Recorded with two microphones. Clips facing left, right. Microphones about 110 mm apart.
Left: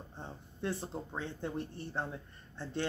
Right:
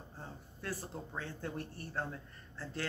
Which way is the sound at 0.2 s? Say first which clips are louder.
Left 6 dB; 20° left (ahead or behind).